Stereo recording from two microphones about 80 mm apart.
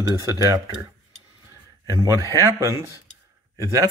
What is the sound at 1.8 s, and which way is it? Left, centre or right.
A man's voice, right.